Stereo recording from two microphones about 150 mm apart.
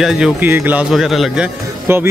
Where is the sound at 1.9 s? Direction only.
15° right (ahead or behind).